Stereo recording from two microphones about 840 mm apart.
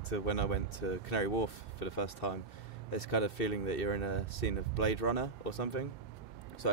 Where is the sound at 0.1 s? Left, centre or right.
Left.